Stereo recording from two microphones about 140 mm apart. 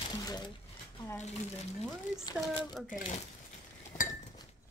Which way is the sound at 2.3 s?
Centre (ahead or behind).